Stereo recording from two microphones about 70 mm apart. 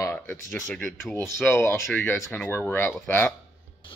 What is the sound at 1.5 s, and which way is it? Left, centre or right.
Speech, left.